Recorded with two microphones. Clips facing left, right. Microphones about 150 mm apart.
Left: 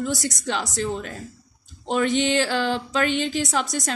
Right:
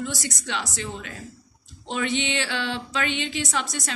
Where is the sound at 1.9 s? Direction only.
45° left (ahead or behind).